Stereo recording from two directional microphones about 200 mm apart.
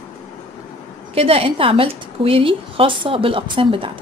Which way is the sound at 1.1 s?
30° right (ahead or behind).